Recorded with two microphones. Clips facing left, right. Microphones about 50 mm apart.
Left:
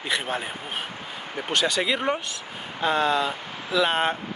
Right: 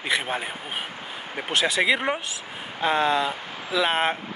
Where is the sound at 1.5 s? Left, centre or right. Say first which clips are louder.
Right 2 dB; centre.